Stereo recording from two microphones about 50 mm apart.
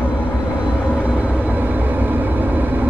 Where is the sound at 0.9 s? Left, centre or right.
Right.